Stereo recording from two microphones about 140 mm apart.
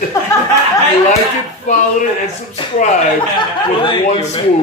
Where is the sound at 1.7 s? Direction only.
55° left (ahead or behind).